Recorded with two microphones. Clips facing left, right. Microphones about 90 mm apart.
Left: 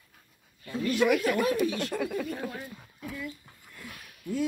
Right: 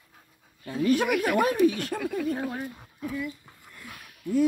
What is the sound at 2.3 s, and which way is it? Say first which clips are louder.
Speech: right 6 dB; 35° right (ahead or behind).